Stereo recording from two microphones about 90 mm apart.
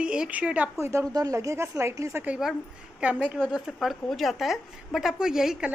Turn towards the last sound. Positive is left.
turn(degrees=-5)  # may be behind; listen again after turning